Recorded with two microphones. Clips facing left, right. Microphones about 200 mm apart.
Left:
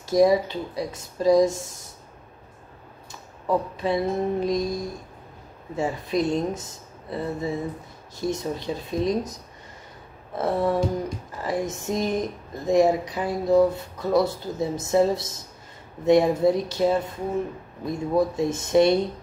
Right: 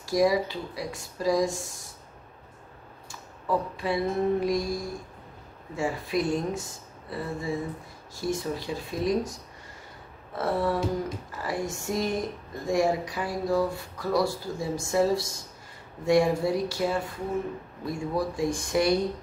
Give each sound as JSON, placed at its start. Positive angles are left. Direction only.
{"t": 0.0, "sound": "speech", "side_deg": 20}
{"t": 3.1, "sound": "a sound", "side_deg": 20}
{"t": 5.8, "sound": "speech", "side_deg": 20}